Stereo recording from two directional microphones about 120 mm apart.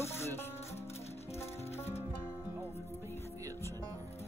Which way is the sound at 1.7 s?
60° left (ahead or behind).